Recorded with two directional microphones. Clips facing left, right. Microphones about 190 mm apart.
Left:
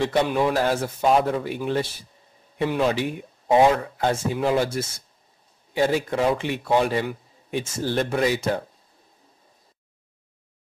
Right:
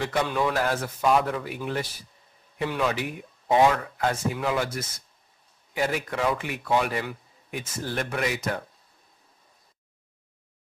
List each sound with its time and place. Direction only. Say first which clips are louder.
0.0 s speech: left 4 dB; 25° left (ahead or behind)